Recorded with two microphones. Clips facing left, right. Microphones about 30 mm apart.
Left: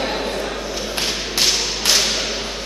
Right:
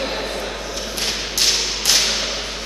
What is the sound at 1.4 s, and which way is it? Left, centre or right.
Whip, centre.